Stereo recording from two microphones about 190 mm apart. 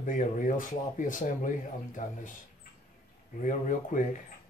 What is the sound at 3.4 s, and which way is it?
Speech, 40° left (ahead or behind).